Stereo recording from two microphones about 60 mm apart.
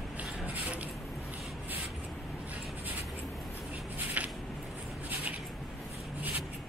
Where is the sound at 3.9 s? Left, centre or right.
Right.